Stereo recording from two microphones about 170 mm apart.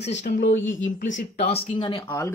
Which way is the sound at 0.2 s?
90° left.